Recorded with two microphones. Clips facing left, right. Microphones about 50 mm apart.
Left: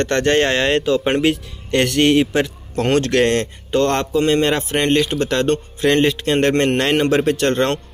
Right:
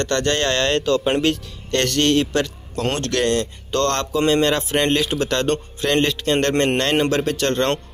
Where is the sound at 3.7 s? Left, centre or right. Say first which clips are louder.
Left 4 dB; centre.